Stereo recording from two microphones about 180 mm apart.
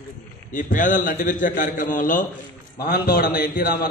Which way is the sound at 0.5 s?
45° left (ahead or behind).